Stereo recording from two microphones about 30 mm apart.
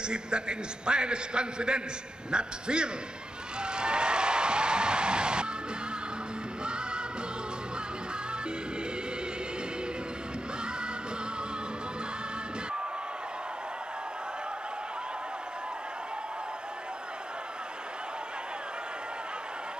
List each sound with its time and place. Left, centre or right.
0.1 s a man's voice: right
3.6 s a sound: right
6.6 s music: right